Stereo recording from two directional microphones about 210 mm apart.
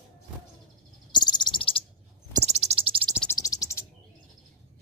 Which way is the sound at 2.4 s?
30° right (ahead or behind).